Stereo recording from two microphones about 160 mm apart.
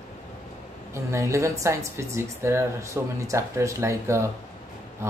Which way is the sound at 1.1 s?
20° right (ahead or behind).